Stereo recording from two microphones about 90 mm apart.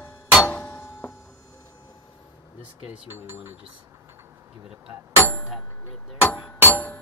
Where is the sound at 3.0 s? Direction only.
25° right (ahead or behind).